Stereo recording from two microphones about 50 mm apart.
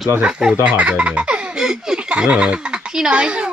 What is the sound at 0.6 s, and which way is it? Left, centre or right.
Baby laughter, right.